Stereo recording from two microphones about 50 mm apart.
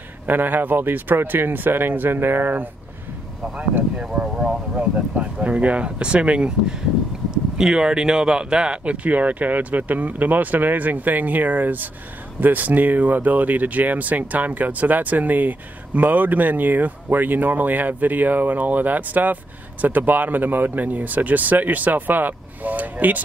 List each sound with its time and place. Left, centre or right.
0.3 s speech: right
4.0 s speech: centre
7.5 s speech: centre; by 23.2 s right